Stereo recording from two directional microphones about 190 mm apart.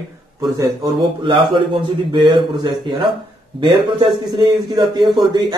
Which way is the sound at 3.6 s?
25° right (ahead or behind).